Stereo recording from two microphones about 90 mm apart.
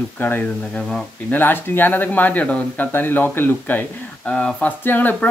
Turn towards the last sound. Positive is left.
turn(degrees=20)  # may be behind; listen again after turning